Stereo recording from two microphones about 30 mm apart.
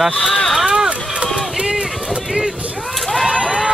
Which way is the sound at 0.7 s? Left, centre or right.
Right.